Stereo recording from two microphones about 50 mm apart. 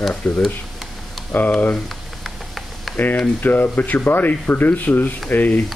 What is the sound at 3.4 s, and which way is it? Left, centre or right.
Speech, left.